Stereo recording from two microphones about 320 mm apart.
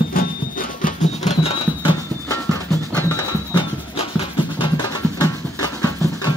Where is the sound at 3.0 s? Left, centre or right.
Centre.